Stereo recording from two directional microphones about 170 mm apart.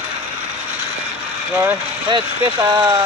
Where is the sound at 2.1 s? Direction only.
25° right (ahead or behind).